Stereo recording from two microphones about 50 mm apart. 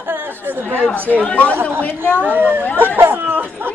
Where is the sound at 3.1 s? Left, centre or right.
Right.